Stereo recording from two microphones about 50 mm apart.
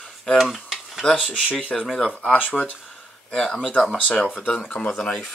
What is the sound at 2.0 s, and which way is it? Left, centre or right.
Speech, left.